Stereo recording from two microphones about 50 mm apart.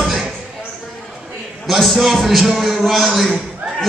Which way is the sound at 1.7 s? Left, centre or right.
Centre.